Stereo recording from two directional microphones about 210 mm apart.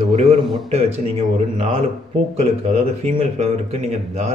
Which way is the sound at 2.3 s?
30° right (ahead or behind).